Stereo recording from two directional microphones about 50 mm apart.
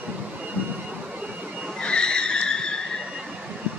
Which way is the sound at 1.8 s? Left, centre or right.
Centre.